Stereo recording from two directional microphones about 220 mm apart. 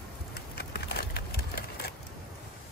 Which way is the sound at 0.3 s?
45° left (ahead or behind).